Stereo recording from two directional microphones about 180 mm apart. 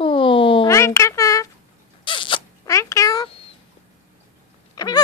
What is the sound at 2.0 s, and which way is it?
Rodents, 30° left (ahead or behind).